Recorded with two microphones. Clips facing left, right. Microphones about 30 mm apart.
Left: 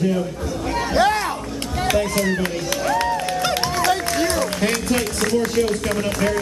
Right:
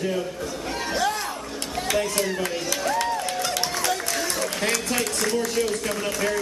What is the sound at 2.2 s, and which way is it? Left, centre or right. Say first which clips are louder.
Speech: left 5 dB; centre.